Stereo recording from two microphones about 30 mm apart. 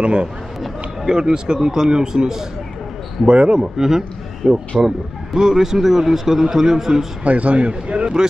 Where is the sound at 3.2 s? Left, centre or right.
Right.